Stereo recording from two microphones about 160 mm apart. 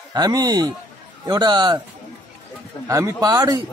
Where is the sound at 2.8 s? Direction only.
20° right (ahead or behind).